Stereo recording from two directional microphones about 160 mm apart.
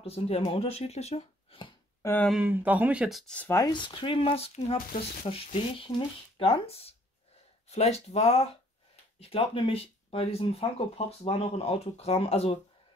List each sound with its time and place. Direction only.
0.0 s speech: 40° left (ahead or behind)
2.2 s speech: 5° right (ahead or behind)
3.4 s speech: 20° left (ahead or behind)
3.7 s speech: 30° left (ahead or behind)